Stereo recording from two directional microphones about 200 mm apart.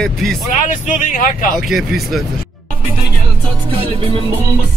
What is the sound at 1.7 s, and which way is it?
Speech, centre (ahead or behind).